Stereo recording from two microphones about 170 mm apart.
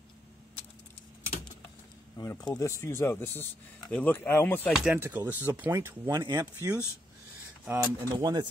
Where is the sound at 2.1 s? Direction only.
20° left (ahead or behind).